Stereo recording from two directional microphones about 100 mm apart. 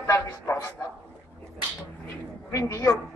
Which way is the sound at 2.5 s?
30° left (ahead or behind).